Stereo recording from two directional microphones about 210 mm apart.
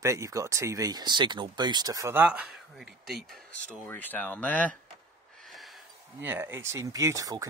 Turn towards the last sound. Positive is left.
turn(degrees=-15)  # may be behind; listen again after turning